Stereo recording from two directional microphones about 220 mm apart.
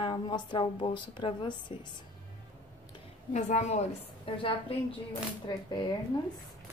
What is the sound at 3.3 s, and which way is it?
Speech, 35° left (ahead or behind).